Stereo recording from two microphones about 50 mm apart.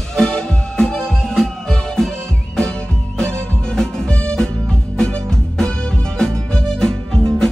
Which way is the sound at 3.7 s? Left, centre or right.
Centre.